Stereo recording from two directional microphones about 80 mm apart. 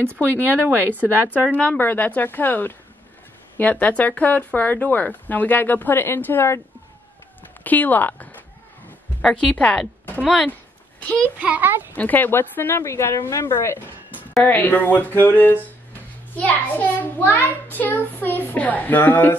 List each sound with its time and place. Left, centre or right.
0.4 s speech: right
1.0 s speech: left
7.6 s speech: left
11.3 s a child's voice: centre
11.9 s speech: left